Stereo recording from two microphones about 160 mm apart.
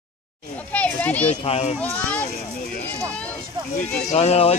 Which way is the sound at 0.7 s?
10° left (ahead or behind).